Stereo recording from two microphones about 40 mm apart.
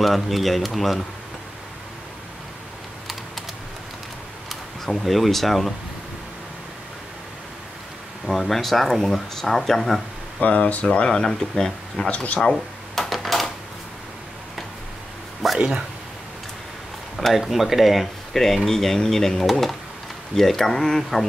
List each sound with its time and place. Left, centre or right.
0.0 s speech: centre
4.8 s speech: centre
8.3 s speech: centre
10.4 s speech: left; by 12.1 s centre
12.1 s speech: left
12.4 s a sound: centre
15.4 s a sound: centre
17.2 s speech: centre